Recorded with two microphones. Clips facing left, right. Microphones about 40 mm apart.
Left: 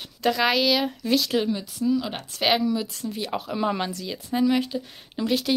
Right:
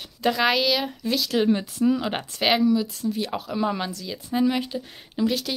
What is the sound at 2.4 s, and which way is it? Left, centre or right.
Speech, centre.